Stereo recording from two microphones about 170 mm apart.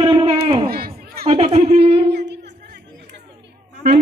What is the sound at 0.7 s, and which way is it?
Chatter, 65° right (ahead or behind).